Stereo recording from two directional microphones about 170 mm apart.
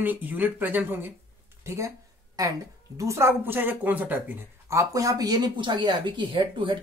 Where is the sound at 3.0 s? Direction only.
15° right (ahead or behind).